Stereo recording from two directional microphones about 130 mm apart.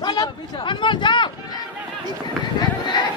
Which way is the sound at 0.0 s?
35° left (ahead or behind).